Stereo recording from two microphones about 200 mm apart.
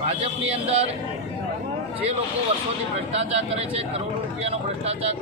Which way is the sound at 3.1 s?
30° right (ahead or behind).